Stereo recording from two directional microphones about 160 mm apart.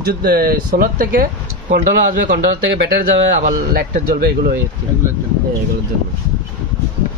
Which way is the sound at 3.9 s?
65° right (ahead or behind).